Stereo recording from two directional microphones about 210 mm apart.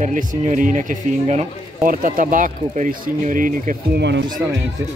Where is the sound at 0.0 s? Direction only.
40° right (ahead or behind).